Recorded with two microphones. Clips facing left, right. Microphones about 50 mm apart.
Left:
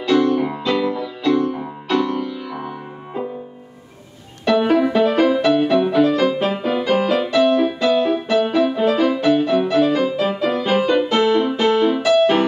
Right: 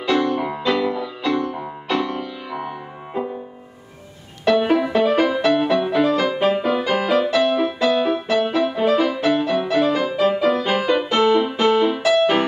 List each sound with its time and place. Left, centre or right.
0.0 s music: centre
4.5 s music: centre